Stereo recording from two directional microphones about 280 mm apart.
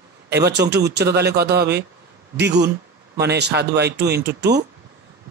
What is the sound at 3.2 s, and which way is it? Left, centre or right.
Speech, right.